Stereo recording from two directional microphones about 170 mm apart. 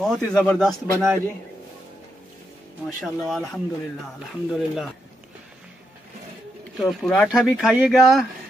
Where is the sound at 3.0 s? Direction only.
Centre (ahead or behind).